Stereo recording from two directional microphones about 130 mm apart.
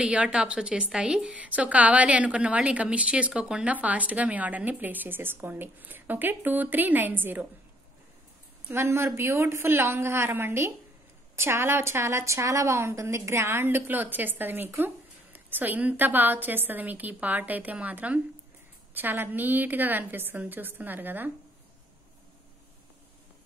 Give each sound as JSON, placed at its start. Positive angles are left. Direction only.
{"t": 0.0, "sound": "a woman's voice", "side_deg": -10}
{"t": 8.6, "sound": "a woman's voice", "side_deg": -20}